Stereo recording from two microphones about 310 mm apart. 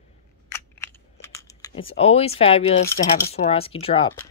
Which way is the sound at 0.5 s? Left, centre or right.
Centre.